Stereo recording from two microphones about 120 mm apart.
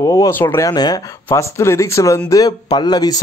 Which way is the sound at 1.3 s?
25° left (ahead or behind).